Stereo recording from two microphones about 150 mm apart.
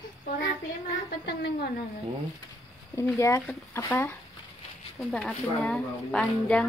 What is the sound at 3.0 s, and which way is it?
A woman's voice, 20° left (ahead or behind).